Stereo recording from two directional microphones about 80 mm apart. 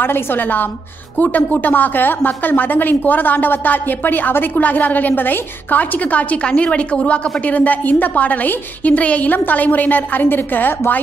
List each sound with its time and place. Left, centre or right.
0.0 s a woman's voice: left